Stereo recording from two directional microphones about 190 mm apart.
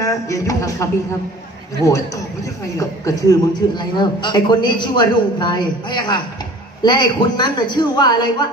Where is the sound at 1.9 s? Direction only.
15° left (ahead or behind).